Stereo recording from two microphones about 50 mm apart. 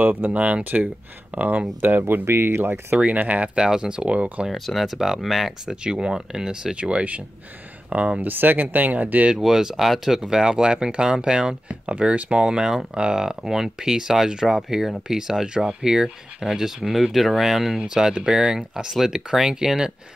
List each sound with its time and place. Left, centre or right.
0.0 s speech: right
2.2 s speech: right
3.0 s speech: right
3.5 s speech: centre
4.5 s speech: centre
5.9 s speech: centre
8.3 s speech: right
9.4 s speech: centre